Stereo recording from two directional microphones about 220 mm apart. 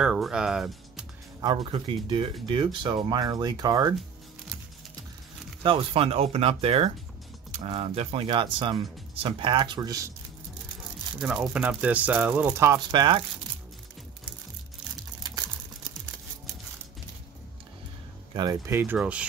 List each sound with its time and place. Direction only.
0.0 s speech: 5° right (ahead or behind)
1.4 s speech: 20° right (ahead or behind)
5.6 s speech: 25° right (ahead or behind)
11.1 s speech: 5° right (ahead or behind)
18.3 s speech: 20° right (ahead or behind)